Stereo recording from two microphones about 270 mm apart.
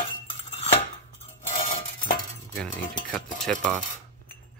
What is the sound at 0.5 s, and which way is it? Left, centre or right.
Cutlery, left.